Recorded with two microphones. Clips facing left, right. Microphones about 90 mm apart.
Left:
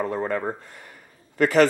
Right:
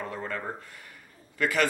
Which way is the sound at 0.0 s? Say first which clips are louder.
Left 9 dB; 40° left (ahead or behind).